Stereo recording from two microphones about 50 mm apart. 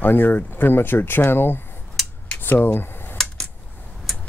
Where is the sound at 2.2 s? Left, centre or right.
Left.